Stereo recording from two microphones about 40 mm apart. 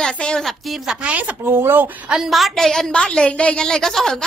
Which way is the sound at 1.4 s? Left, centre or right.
Right.